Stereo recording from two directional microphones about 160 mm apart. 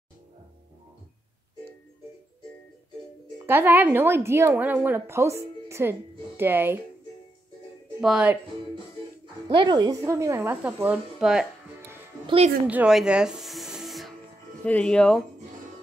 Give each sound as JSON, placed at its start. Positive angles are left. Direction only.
{"t": 3.4, "sound": "a woman's voice", "side_deg": -15}
{"t": 8.0, "sound": "speech", "side_deg": -5}
{"t": 9.5, "sound": "a woman's voice", "side_deg": -25}
{"t": 12.6, "sound": "music", "side_deg": -5}
{"t": 14.6, "sound": "speech", "side_deg": 10}